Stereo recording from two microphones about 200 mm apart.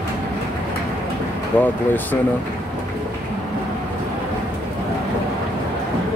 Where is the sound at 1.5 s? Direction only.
10° left (ahead or behind).